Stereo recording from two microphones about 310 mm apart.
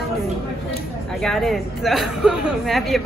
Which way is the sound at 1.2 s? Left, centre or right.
Centre.